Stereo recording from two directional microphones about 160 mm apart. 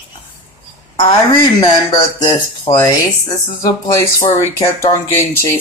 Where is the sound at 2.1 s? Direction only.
25° left (ahead or behind).